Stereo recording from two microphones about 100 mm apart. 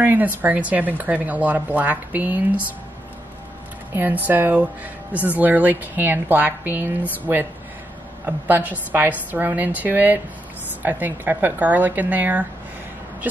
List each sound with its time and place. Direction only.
0.0 s speech: 20° right (ahead or behind)
3.9 s a woman's voice: 20° right (ahead or behind)